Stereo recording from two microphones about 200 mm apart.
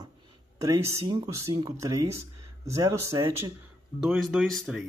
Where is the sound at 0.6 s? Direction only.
15° right (ahead or behind).